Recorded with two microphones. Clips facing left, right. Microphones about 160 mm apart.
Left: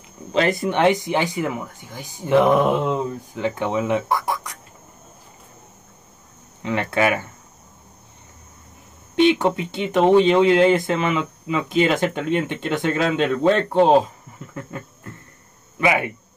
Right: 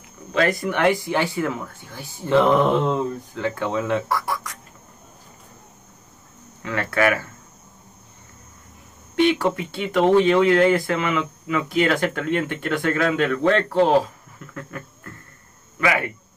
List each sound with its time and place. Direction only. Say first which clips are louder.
0.3 s speech: left 1 dB; 25° left (ahead or behind)
6.6 s speech: left 1 dB; 20° left (ahead or behind)
9.1 s speech: left 2 dB; 20° left (ahead or behind)